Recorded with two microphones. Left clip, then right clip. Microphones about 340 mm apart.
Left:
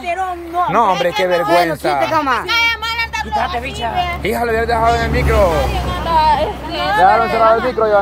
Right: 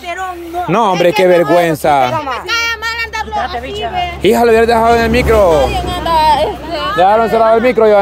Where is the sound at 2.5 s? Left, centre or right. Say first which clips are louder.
Even; centre.